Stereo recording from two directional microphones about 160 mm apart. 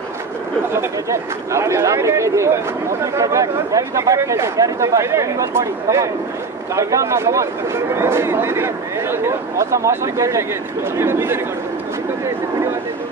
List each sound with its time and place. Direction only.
0.7 s speech: 20° right (ahead or behind)